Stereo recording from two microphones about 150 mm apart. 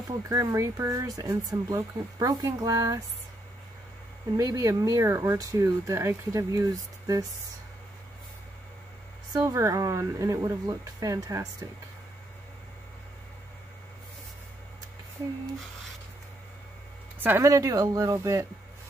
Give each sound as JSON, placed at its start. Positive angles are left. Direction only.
{"t": 0.3, "sound": "speech", "side_deg": -20}
{"t": 4.4, "sound": "speech", "side_deg": -20}
{"t": 9.3, "sound": "speech", "side_deg": -20}
{"t": 17.2, "sound": "speech", "side_deg": -15}